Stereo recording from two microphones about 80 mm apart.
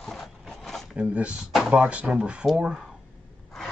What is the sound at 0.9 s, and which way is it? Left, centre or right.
Speech, centre.